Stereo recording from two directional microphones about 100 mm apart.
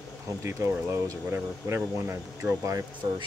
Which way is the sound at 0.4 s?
30° right (ahead or behind).